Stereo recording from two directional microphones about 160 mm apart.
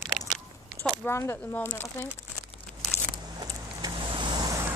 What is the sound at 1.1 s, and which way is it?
Speech, 15° left (ahead or behind).